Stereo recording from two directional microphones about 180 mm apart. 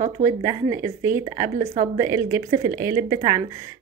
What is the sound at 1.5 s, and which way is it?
Speech, 40° right (ahead or behind).